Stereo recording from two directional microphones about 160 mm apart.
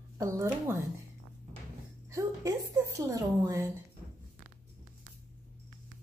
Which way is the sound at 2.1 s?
20° right (ahead or behind).